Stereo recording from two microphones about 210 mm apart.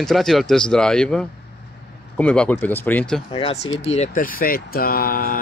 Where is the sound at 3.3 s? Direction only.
25° left (ahead or behind); by 5.4 s 40° left (ahead or behind).